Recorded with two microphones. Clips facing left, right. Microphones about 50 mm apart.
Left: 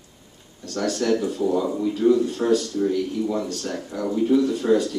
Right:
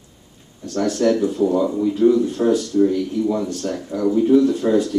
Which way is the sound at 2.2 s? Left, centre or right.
Centre.